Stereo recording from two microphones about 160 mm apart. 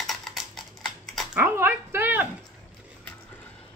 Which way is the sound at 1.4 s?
15° right (ahead or behind).